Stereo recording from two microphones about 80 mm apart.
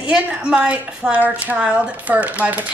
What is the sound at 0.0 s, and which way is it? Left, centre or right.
A woman's voice, centre.